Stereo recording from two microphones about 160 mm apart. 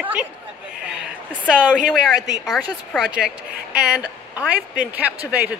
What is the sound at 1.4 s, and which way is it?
A woman's voice, centre (ahead or behind).